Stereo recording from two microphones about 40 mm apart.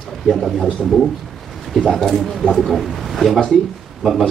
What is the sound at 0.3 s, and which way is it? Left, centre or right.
Speech, centre.